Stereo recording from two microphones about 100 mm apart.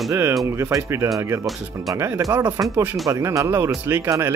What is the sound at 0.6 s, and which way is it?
Speech, 30° right (ahead or behind).